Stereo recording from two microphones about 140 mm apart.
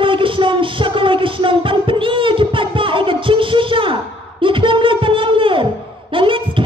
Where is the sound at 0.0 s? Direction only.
40° right (ahead or behind).